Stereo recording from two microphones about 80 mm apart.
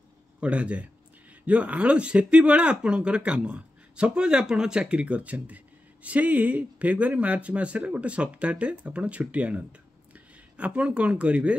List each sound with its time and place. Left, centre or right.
0.4 s speech: centre